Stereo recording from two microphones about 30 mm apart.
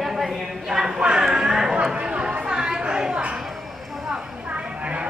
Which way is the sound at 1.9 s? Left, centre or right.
Right.